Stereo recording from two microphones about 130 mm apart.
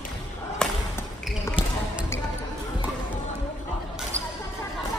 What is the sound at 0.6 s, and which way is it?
Whip, 5° left (ahead or behind).